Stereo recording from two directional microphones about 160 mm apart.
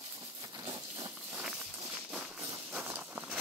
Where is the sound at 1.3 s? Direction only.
5° right (ahead or behind).